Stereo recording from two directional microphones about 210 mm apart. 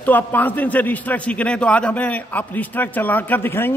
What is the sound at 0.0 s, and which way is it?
A man's voice, 10° left (ahead or behind).